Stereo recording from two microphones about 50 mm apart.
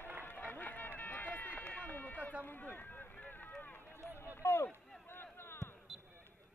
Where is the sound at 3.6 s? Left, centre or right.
Left.